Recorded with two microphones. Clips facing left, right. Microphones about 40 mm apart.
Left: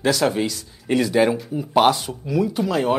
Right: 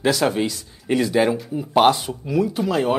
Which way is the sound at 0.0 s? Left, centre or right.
Centre.